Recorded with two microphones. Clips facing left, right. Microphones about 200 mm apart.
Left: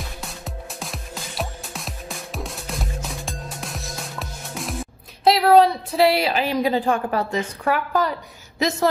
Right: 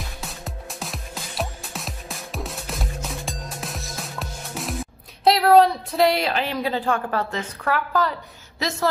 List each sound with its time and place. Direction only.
0.2 s music: centre (ahead or behind)
5.2 s a woman's voice: centre (ahead or behind); by 8.8 s 20° left (ahead or behind)